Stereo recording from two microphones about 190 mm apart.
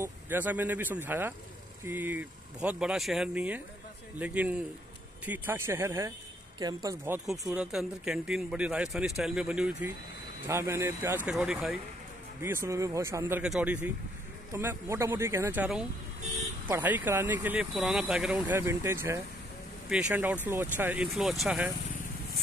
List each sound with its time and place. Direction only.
0.0 s speech: 10° right (ahead or behind)
7.2 s speech: 5° right (ahead or behind)